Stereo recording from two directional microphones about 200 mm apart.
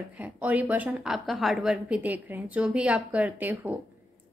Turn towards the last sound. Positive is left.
turn(degrees=-10)  # may be behind; listen again after turning